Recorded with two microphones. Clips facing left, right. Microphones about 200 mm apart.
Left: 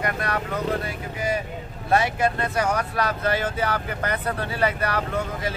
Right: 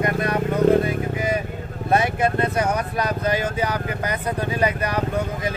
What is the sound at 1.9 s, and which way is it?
Speech, 20° right (ahead or behind).